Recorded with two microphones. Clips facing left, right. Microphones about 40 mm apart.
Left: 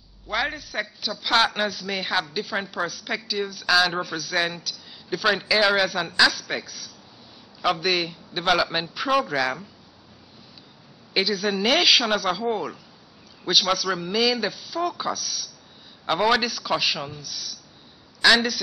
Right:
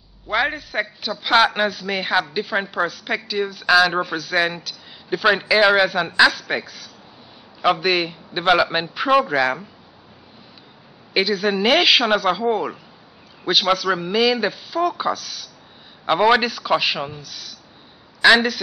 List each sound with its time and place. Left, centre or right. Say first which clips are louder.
0.3 s a man's voice: right 5 dB; centre
4.6 s a sound: right 4 dB; centre
5.5 s a man's voice: right 5 dB; right
11.1 s a man's voice: right 4 dB; centre
13.5 s a man's voice: right 4 dB; centre